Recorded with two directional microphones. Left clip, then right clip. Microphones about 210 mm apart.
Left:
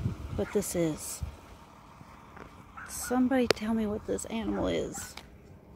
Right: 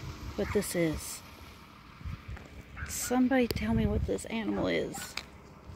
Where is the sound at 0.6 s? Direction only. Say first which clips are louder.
Even; 10° left (ahead or behind).